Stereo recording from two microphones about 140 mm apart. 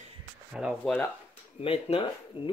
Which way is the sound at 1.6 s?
40° left (ahead or behind).